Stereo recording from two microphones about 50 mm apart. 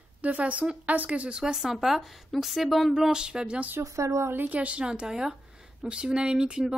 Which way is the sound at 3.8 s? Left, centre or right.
Right.